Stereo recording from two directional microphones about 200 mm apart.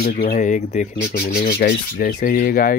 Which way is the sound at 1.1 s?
55° left (ahead or behind).